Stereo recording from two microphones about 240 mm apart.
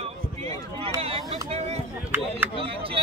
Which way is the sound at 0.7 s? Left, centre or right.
Right.